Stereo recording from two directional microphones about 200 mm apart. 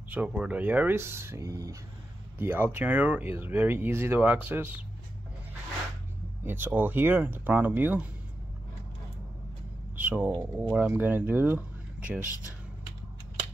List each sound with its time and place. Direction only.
0.1 s speech: 10° right (ahead or behind)
6.4 s speech: 10° right (ahead or behind)
9.9 s a sound: 10° right (ahead or behind)
10.3 s speech: 15° right (ahead or behind)